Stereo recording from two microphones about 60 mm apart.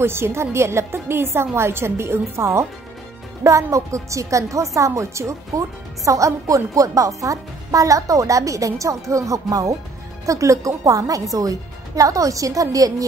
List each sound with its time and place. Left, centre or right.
0.0 s a woman's voice: right
3.4 s a woman's voice: right